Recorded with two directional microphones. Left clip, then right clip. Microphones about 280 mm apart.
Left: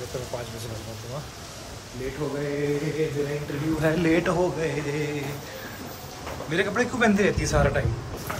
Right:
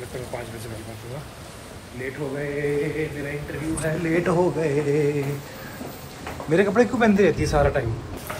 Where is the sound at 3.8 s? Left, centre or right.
Left.